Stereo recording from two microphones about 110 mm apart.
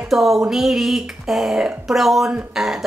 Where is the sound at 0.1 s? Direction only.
Centre (ahead or behind).